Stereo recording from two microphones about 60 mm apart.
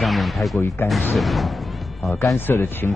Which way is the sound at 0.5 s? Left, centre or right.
Left.